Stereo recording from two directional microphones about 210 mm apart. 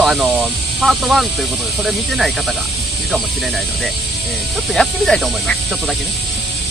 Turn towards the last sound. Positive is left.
turn(degrees=0)  # may be behind; listen again after turning